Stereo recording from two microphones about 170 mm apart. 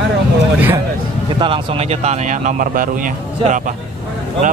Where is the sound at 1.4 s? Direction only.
35° right (ahead or behind); by 3.7 s 50° right (ahead or behind).